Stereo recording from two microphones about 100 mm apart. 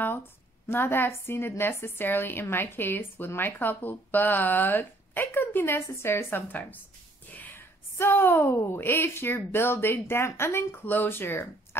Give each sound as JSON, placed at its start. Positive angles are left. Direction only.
{"t": 0.7, "sound": "a woman's voice", "side_deg": 20}